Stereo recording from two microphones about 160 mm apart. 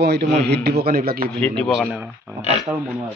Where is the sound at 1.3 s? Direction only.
10° left (ahead or behind).